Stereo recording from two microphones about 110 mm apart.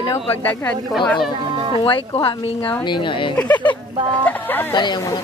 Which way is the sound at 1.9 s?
50° left (ahead or behind).